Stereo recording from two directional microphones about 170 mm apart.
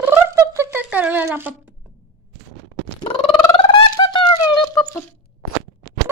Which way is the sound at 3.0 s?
35° left (ahead or behind).